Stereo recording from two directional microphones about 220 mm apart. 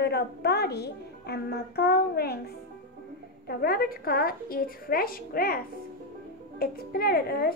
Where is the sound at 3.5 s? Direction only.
45° left (ahead or behind).